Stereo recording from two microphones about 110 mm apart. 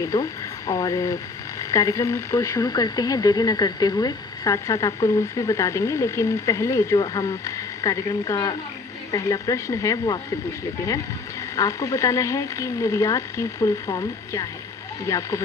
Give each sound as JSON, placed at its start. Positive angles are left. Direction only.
{"t": 0.0, "sound": "speech", "side_deg": 35}
{"t": 11.5, "sound": "speech", "side_deg": 30}